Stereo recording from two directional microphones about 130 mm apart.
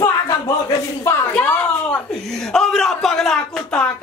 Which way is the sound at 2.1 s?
5° left (ahead or behind).